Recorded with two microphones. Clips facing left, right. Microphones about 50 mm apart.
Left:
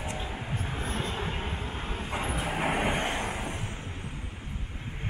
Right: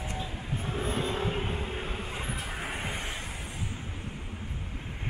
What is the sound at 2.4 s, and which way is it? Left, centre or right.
Vehicle, left.